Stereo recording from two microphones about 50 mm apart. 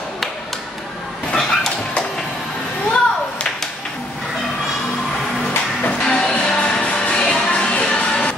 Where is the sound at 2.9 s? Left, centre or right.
Centre.